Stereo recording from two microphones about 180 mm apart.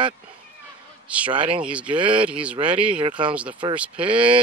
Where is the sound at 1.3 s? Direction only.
25° right (ahead or behind).